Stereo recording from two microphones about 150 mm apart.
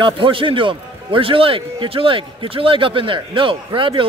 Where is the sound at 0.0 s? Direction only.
35° right (ahead or behind).